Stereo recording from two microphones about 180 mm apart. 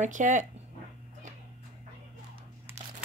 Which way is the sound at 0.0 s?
45° right (ahead or behind).